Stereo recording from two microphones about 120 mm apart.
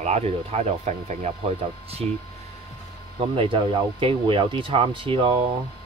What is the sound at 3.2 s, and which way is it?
Speech, 50° right (ahead or behind).